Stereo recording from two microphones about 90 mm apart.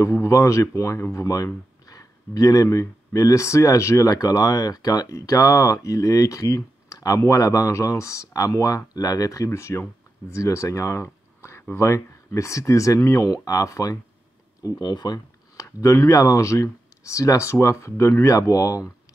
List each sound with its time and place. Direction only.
0.0 s speech: 35° left (ahead or behind)
14.6 s speech: 50° left (ahead or behind)
15.5 s speech: 35° left (ahead or behind)